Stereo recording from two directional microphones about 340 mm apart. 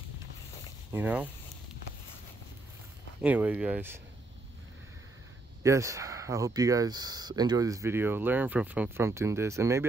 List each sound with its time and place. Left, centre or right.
0.9 s speech: centre
3.2 s speech: centre
5.6 s speech: centre